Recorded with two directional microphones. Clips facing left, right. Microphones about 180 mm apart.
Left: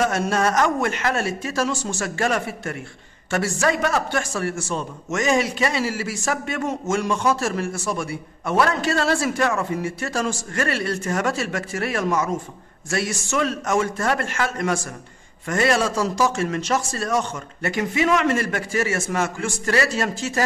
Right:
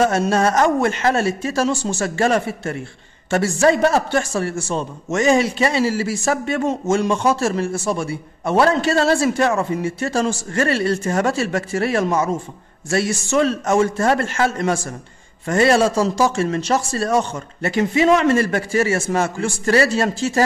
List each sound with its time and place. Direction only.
0.0 s a man's voice: 30° right (ahead or behind)